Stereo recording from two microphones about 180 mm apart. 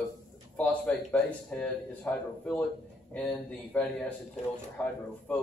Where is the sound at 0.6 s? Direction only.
10° left (ahead or behind).